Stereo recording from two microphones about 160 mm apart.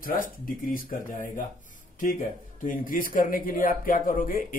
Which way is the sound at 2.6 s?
60° left (ahead or behind).